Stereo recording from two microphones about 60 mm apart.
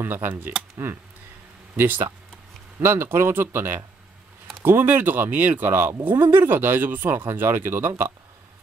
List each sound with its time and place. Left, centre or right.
0.0 s speech: right